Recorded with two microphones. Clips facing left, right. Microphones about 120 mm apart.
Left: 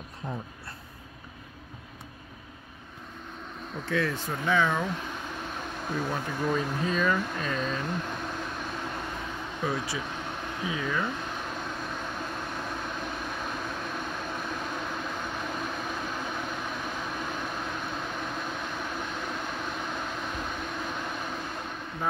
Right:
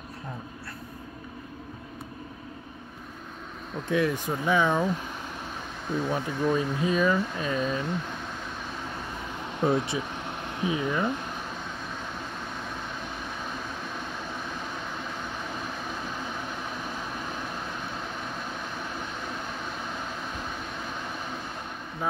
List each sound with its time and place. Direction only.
3.9 s speech: 15° right (ahead or behind)
5.9 s speech: 5° right (ahead or behind)
9.6 s speech: 25° right (ahead or behind)